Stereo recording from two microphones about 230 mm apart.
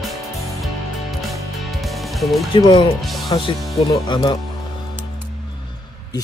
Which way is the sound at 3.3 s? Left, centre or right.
Left.